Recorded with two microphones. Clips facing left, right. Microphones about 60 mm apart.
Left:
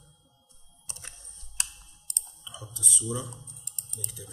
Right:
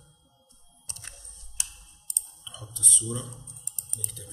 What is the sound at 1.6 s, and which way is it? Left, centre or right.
Clicking, left.